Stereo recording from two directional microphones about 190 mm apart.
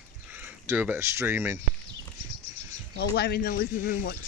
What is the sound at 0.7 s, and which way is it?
Speech, 10° right (ahead or behind).